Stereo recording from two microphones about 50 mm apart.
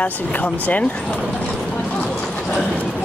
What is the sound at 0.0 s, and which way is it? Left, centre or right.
Speech, left.